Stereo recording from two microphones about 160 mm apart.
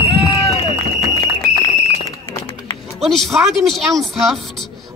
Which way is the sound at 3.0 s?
Centre (ahead or behind).